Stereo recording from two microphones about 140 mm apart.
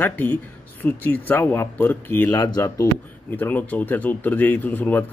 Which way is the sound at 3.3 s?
10° left (ahead or behind).